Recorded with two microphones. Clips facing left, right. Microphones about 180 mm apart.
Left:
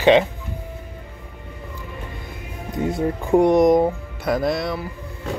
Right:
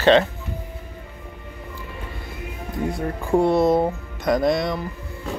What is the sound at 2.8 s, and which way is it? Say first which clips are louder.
Speech: left 4 dB; 20° left (ahead or behind).